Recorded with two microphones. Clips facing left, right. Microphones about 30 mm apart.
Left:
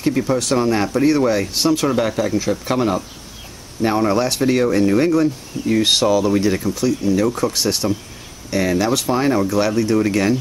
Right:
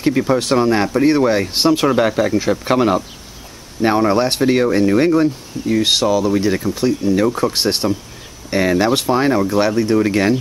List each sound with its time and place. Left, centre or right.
0.0 s speech: centre
4.1 s speech: right
4.4 s speech: centre
5.7 s speech: centre
6.7 s speech: right
9.0 s speech: centre